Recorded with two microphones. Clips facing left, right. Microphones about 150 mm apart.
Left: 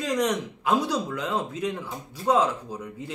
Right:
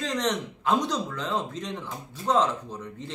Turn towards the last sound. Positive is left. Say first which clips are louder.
# left 2 dB
turn(degrees=10)  # may be behind; listen again after turning